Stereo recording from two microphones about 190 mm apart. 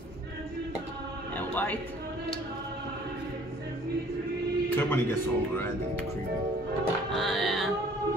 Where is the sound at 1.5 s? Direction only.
10° left (ahead or behind).